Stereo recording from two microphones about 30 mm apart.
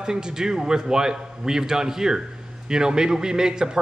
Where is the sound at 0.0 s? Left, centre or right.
Right.